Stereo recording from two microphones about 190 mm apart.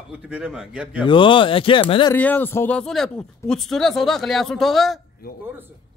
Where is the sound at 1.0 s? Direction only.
25° left (ahead or behind).